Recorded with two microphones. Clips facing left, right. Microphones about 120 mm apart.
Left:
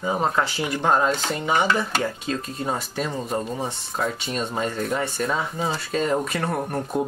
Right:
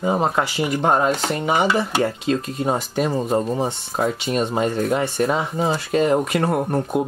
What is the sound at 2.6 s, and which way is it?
Speech, 25° right (ahead or behind).